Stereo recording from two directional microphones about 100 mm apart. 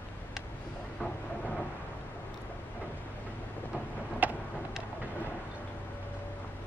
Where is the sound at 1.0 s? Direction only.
5° left (ahead or behind).